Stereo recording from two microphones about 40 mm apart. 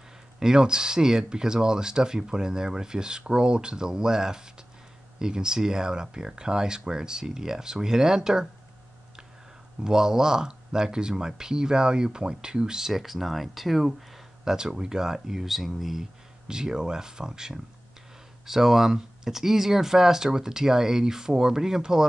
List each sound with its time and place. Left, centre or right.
0.4 s speech: centre
9.8 s speech: centre
14.4 s speech: centre
16.4 s speech: centre